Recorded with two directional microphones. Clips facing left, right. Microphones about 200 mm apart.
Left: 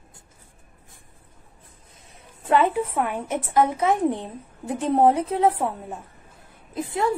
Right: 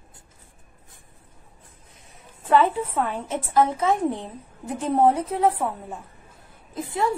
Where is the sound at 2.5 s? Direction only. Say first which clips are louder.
Even; 15° left (ahead or behind).